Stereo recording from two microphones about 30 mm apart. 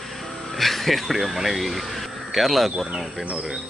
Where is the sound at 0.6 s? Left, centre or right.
Centre.